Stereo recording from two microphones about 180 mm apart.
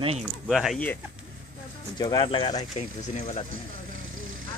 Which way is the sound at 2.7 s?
40° left (ahead or behind).